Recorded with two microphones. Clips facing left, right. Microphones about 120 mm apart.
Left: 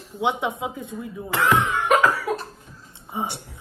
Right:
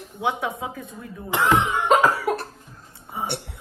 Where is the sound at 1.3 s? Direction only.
20° right (ahead or behind).